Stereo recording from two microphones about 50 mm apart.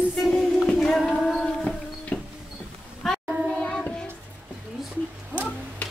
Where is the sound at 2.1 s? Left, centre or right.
Left.